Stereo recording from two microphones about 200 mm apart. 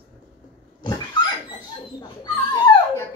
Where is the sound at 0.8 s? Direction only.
20° left (ahead or behind).